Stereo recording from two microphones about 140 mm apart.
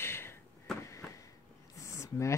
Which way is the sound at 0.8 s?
20° left (ahead or behind).